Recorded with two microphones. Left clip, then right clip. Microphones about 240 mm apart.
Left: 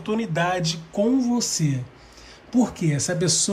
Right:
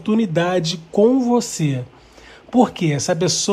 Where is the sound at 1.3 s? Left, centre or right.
Centre.